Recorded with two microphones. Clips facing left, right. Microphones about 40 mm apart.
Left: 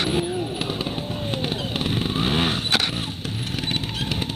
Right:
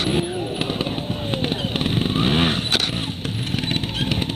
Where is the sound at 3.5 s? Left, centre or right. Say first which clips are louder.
Right 3 dB; centre.